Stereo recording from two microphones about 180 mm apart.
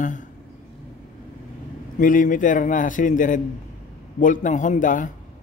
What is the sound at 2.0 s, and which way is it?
Speech, 45° left (ahead or behind).